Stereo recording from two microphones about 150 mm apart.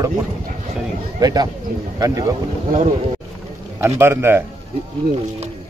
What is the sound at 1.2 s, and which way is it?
Speech, 25° right (ahead or behind).